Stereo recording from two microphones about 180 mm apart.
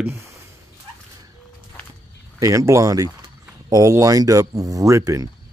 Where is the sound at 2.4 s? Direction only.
15° right (ahead or behind).